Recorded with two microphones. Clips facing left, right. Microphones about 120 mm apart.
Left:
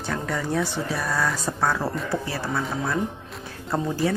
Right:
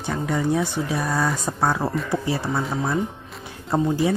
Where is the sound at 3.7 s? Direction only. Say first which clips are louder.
Right 4 dB; 15° right (ahead or behind).